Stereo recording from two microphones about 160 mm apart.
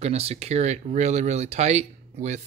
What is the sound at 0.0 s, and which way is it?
Speech, 40° right (ahead or behind).